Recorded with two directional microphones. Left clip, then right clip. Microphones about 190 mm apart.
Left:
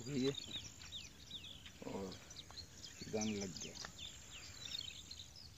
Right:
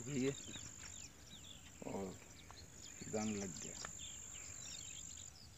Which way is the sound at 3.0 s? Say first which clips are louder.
Left 1 dB; 25° right (ahead or behind).